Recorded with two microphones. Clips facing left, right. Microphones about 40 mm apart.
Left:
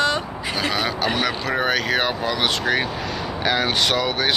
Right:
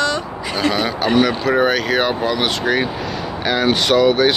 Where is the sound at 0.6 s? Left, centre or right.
Centre.